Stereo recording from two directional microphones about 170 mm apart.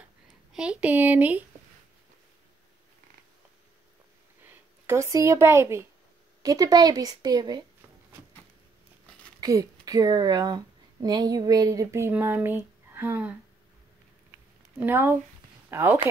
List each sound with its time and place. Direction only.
0.5 s speech: 5° right (ahead or behind)
4.5 s a woman's voice: 15° right (ahead or behind)
9.4 s speech: 20° right (ahead or behind)
14.8 s speech: 10° right (ahead or behind)